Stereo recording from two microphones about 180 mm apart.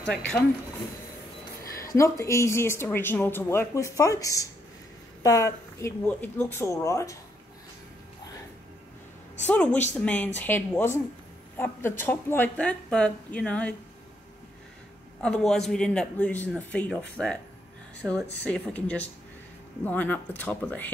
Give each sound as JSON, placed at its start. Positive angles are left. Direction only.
{"t": 1.8, "sound": "speech", "side_deg": 15}
{"t": 9.5, "sound": "speech", "side_deg": 10}
{"t": 15.2, "sound": "speech", "side_deg": 5}
{"t": 18.0, "sound": "speech", "side_deg": 5}